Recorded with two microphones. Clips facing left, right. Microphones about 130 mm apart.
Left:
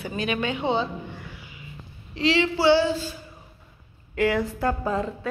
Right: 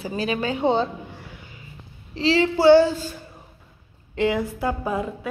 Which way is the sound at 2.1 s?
35° right (ahead or behind).